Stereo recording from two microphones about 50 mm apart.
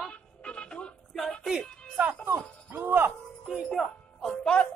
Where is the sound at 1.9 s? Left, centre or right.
Right.